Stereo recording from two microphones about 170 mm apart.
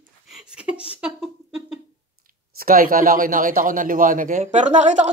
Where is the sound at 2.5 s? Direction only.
55° right (ahead or behind).